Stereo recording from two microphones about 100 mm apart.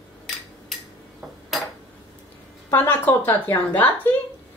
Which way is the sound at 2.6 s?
20° left (ahead or behind).